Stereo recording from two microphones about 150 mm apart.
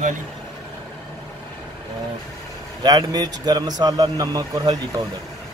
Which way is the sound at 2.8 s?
25° right (ahead or behind).